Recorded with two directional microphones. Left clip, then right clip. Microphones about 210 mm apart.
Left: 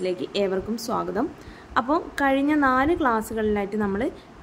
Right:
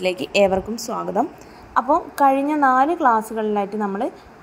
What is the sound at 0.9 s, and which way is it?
A woman's voice, 5° right (ahead or behind).